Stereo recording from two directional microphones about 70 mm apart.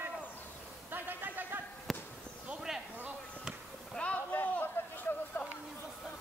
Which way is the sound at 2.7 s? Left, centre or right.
Centre.